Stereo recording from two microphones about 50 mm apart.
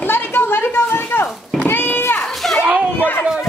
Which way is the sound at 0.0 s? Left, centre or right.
Left.